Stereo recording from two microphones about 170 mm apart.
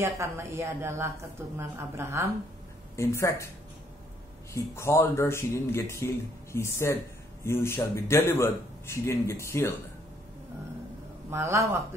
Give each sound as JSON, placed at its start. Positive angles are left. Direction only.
{"t": 0.0, "sound": "a woman's voice", "side_deg": -15}
{"t": 3.0, "sound": "a man's voice", "side_deg": 15}
{"t": 4.6, "sound": "a man's voice", "side_deg": 15}
{"t": 11.2, "sound": "a woman's voice", "side_deg": -15}